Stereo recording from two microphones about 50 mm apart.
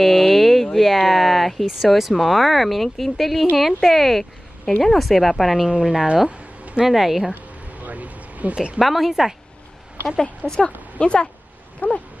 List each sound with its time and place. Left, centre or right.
0.0 s a sound: centre
0.7 s speech: centre
5.7 s speech: centre
6.2 s a sound: right
6.9 s speech: centre
7.8 s vehicle: right
8.7 s speech: centre
10.4 s speech: right
11.0 s speech: left
11.8 s a sound: left